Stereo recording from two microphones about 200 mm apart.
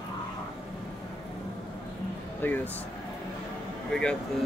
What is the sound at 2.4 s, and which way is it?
Speech, 10° left (ahead or behind).